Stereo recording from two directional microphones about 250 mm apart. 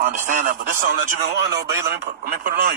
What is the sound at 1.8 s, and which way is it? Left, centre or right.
Speech, right.